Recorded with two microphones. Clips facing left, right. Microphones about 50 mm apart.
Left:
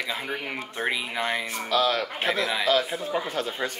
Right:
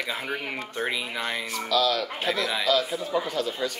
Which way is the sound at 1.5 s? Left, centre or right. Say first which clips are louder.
Right 2 dB; left.